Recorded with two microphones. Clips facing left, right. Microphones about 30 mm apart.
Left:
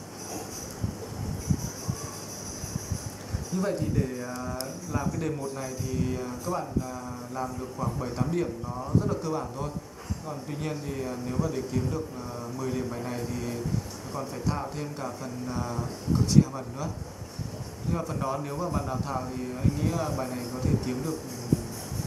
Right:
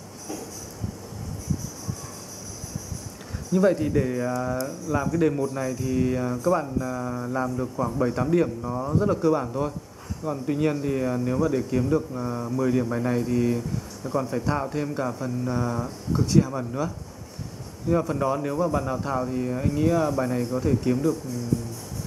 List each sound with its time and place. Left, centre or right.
3.5 s a man's voice: right
7.3 s a man's voice: centre
9.5 s speech: centre
10.2 s a man's voice: right